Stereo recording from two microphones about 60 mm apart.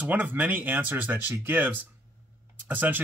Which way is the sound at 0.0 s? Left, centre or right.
Right.